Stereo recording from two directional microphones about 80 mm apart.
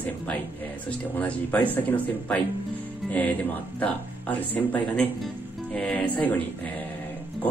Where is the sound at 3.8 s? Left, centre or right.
Centre.